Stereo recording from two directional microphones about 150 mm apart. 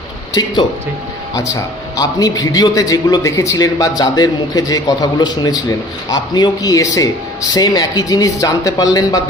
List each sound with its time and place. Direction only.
0.3 s a man's voice: 25° left (ahead or behind)